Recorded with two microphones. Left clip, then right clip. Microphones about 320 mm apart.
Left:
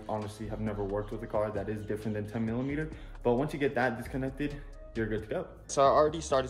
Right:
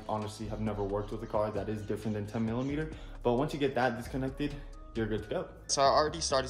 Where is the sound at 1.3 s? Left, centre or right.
Centre.